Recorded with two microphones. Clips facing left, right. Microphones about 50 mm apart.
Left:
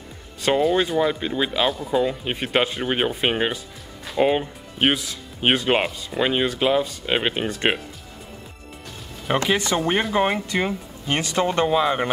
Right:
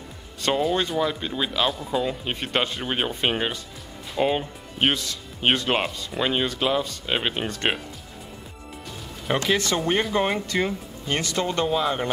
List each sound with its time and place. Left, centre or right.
0.4 s speech: centre
9.5 s speech: centre